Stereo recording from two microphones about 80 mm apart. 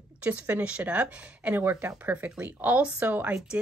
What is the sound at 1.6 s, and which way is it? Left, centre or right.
Speech, right.